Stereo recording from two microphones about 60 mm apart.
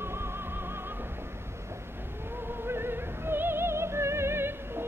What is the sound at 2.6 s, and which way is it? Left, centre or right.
Music, right.